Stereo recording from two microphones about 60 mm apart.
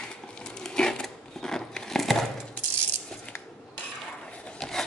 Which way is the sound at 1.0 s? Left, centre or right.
Centre.